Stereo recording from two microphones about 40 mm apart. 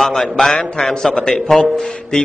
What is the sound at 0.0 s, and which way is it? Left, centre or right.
A man's voice, centre.